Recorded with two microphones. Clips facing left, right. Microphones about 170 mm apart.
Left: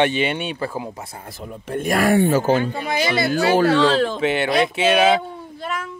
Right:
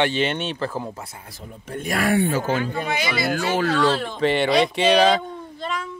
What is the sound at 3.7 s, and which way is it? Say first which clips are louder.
Speech: left 4 dB; 90° left.